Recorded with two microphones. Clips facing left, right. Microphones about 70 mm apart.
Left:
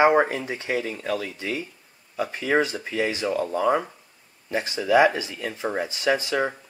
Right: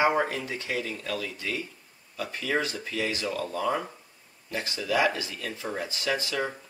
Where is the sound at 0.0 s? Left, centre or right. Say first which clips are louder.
Left 6 dB; left.